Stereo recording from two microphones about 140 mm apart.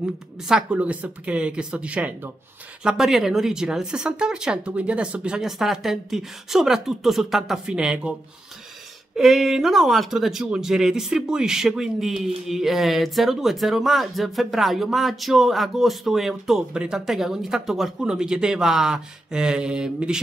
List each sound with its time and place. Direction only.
0.5 s speech: 5° right (ahead or behind)
9.1 s speech: centre (ahead or behind)